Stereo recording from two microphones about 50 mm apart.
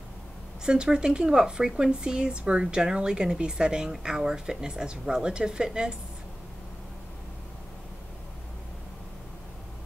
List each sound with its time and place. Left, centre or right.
0.7 s speech: centre